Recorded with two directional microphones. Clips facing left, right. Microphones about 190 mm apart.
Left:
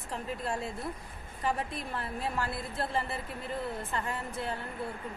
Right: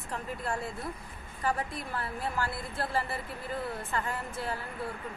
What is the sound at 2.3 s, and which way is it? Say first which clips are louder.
Speech: even; 25° left (ahead or behind).